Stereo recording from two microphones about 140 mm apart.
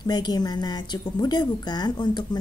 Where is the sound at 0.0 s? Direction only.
30° left (ahead or behind).